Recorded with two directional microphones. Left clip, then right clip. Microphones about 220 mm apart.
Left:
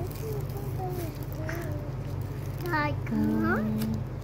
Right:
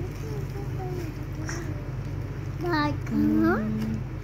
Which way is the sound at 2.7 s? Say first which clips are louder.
Right 2 dB; 60° right (ahead or behind).